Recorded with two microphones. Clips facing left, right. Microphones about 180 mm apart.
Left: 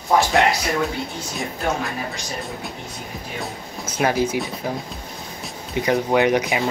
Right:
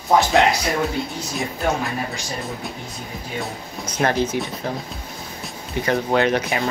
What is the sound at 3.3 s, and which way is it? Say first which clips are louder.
Speech: right 3 dB; 5° left (ahead or behind).